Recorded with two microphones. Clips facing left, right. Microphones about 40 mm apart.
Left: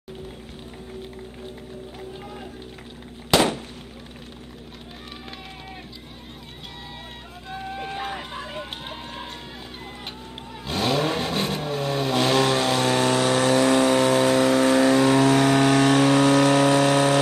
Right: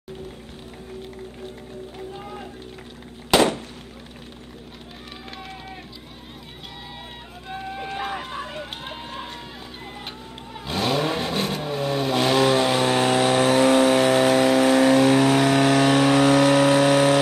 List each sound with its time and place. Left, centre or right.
2.0 s rowboat: centre
3.3 s fireworks: centre
7.4 s run: centre
10.7 s vehicle: centre
13.0 s vehicle: right
14.1 s vehicle: right
14.7 s vehicle: centre